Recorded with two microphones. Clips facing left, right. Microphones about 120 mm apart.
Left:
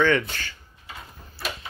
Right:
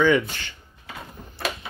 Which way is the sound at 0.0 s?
10° right (ahead or behind).